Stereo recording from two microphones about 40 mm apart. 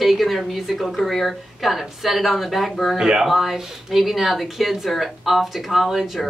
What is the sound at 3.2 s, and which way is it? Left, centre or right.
Speech, centre.